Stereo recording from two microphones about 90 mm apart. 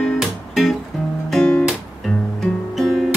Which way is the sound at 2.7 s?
Centre (ahead or behind).